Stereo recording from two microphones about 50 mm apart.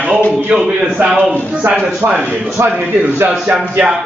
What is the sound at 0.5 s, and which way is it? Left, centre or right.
Speech, right.